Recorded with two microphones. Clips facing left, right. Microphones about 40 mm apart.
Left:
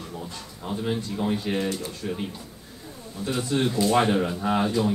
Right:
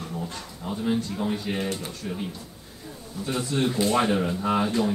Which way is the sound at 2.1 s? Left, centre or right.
Left.